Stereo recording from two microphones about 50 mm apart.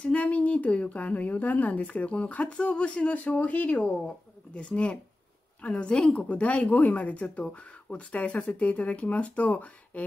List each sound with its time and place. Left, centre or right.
0.0 s a woman's voice: left
4.6 s a woman's voice: left